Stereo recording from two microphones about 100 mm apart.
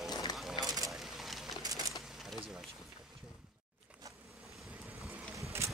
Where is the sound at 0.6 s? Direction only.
40° right (ahead or behind).